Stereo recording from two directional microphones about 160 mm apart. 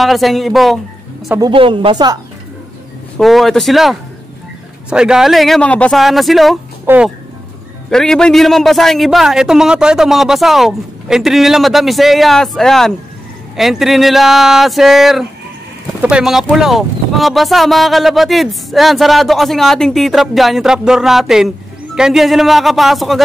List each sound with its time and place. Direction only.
0.0 s speech: centre (ahead or behind)
1.4 s speech: 30° right (ahead or behind)
3.2 s speech: centre (ahead or behind)
6.9 s speech: 15° right (ahead or behind)
7.9 s speech: 5° left (ahead or behind)